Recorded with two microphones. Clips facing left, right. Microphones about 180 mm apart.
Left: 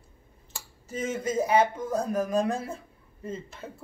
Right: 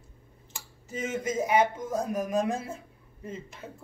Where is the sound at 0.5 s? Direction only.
35° left (ahead or behind).